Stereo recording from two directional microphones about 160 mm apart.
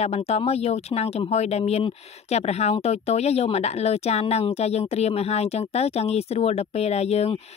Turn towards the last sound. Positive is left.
turn(degrees=40)  # may be behind; listen again after turning